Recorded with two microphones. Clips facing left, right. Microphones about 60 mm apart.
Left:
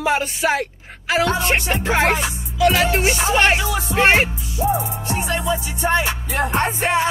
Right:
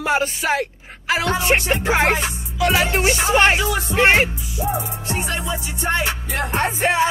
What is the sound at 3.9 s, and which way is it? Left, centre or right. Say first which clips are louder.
Music: even; centre.